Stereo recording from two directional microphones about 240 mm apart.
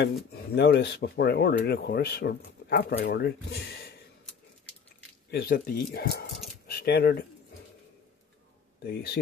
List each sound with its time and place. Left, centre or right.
0.0 s speech: left
5.3 s speech: left
8.8 s speech: left